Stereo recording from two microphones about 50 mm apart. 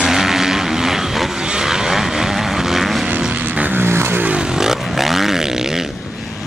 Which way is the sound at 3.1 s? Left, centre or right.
Right.